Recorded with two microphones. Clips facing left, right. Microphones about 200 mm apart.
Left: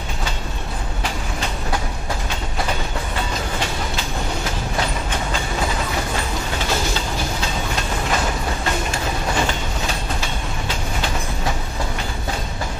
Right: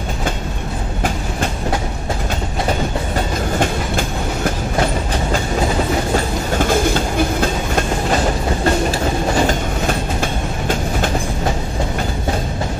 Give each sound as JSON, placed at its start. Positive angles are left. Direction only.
{"t": 6.1, "sound": "train", "side_deg": -50}
{"t": 9.5, "sound": "train", "side_deg": -50}